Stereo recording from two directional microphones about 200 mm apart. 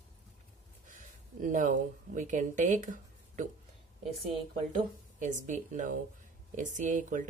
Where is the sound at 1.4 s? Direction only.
40° right (ahead or behind).